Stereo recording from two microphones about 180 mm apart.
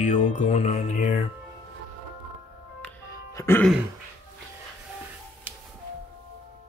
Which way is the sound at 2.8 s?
15° left (ahead or behind).